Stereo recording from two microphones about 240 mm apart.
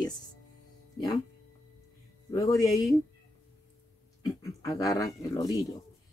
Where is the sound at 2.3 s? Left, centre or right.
Centre.